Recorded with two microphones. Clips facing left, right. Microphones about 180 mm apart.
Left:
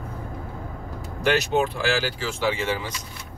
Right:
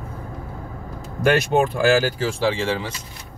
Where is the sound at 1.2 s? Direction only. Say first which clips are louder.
Right 4 dB; 50° right (ahead or behind); by 2.8 s 30° right (ahead or behind).